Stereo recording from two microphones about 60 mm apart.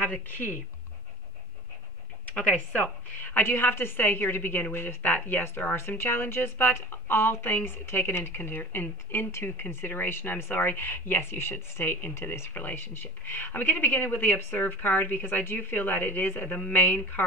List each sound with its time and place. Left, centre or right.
0.0 s a woman's voice: left
2.3 s a woman's voice: left